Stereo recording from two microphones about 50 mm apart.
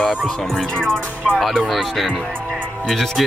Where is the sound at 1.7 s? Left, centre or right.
Centre.